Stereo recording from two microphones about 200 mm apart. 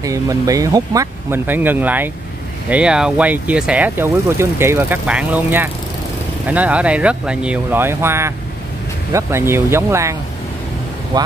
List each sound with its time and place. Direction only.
0.0 s speech: 15° right (ahead or behind)
11.1 s speech: 20° right (ahead or behind)